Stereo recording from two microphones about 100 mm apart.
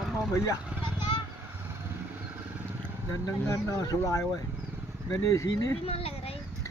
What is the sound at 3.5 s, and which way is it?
Speech, 30° left (ahead or behind).